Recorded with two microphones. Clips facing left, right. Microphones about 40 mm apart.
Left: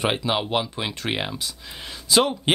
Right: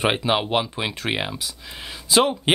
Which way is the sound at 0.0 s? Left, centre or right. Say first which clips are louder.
Right 2 dB; centre.